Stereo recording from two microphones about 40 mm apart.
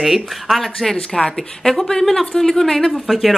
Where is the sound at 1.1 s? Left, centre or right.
Centre.